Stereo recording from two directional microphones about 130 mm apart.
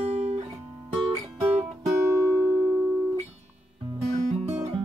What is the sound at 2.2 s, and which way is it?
Music, 15° right (ahead or behind).